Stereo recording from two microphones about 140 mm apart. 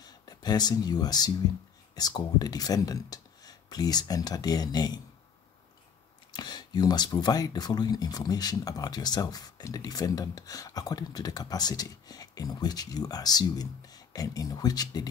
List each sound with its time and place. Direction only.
0.0 s speech: 30° left (ahead or behind)
6.3 s speech: 30° left (ahead or behind)